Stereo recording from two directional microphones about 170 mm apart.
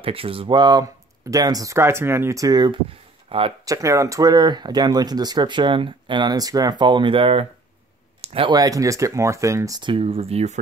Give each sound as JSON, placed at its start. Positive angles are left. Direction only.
{"t": 0.0, "sound": "speech", "side_deg": -35}
{"t": 3.6, "sound": "speech", "side_deg": -20}